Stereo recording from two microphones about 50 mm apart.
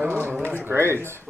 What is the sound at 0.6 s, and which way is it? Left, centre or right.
Speech, right.